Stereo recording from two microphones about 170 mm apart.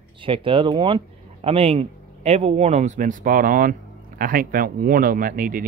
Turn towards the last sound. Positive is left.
turn(degrees=-55)  # may be behind; listen again after turning